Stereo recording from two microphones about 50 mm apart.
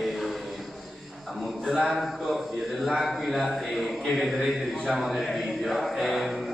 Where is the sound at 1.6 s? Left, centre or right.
Centre.